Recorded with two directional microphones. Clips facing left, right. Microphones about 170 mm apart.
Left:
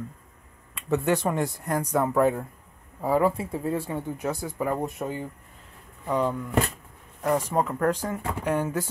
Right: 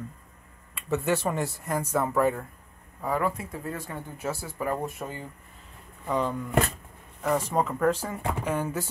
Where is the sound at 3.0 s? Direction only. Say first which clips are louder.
Left 5 dB; 25° left (ahead or behind).